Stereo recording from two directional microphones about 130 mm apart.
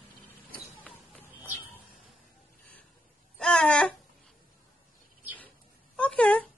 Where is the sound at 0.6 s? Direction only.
5° left (ahead or behind).